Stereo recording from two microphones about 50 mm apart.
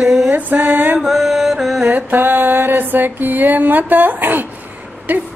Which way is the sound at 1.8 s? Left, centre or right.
Right.